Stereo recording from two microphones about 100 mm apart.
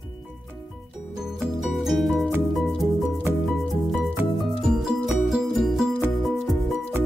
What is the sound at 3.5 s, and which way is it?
Music, centre (ahead or behind).